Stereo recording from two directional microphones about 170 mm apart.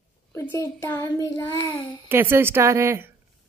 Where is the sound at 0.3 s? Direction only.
15° left (ahead or behind).